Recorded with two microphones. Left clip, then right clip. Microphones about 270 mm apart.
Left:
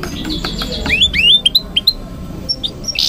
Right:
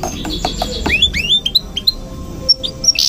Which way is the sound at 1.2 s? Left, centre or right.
Left.